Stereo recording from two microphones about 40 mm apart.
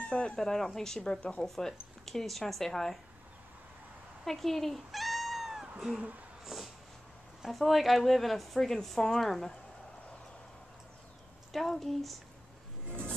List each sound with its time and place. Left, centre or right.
0.0 s a sound: left
0.4 s speech: centre
4.2 s cat: centre
6.4 s a sound: centre
7.4 s speech: centre
11.5 s speech: centre